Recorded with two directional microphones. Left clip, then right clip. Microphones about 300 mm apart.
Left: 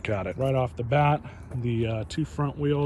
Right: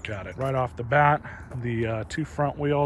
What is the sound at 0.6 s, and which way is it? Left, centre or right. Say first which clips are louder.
Speech: right 3 dB; right.